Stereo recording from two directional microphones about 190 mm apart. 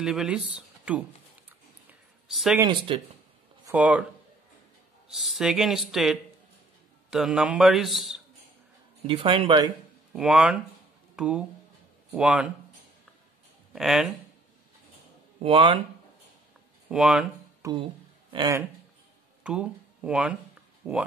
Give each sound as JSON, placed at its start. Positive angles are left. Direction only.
{"t": 0.0, "sound": "speech", "side_deg": -5}
{"t": 1.9, "sound": "a sound", "side_deg": 0}
{"t": 2.6, "sound": "speech", "side_deg": -25}
{"t": 3.6, "sound": "speech", "side_deg": -5}
{"t": 5.0, "sound": "speech", "side_deg": 0}
{"t": 9.0, "sound": "speech", "side_deg": -25}
{"t": 10.1, "sound": "speech", "side_deg": -5}
{"t": 13.7, "sound": "speech", "side_deg": 0}
{"t": 15.3, "sound": "speech", "side_deg": -30}
{"t": 16.9, "sound": "speech", "side_deg": -5}
{"t": 17.6, "sound": "speech", "side_deg": -15}
{"t": 19.4, "sound": "speech", "side_deg": -5}